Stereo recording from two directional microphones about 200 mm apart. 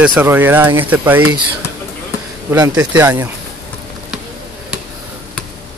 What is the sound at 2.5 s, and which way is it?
Speech, 15° right (ahead or behind).